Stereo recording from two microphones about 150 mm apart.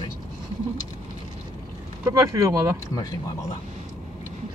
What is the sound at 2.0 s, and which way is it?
Speech, 20° right (ahead or behind).